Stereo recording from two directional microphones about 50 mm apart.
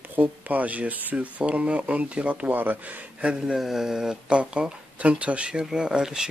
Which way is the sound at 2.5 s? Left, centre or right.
Right.